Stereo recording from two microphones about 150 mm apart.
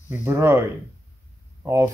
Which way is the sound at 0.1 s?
15° right (ahead or behind).